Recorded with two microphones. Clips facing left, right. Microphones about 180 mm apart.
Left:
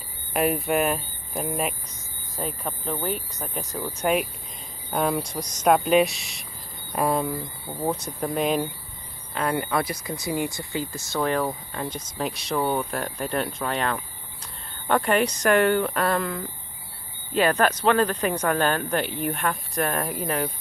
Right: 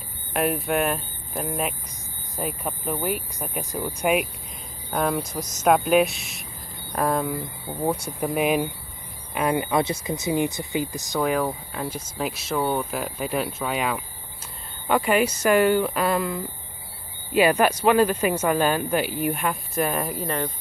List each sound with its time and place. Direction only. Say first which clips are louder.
0.3 s speech: left 1 dB; centre (ahead or behind)
2.3 s speech: right 1 dB; 10° right (ahead or behind)